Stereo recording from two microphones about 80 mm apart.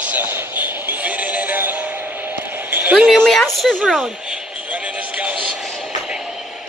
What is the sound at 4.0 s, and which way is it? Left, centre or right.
Music, centre.